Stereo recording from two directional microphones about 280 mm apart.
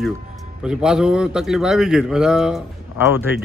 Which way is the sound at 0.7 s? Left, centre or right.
Centre.